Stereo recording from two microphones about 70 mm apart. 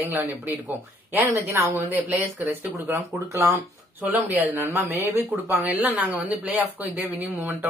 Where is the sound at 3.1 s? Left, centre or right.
Right.